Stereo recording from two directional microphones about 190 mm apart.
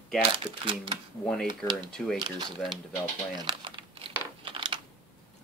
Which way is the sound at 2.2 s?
25° right (ahead or behind).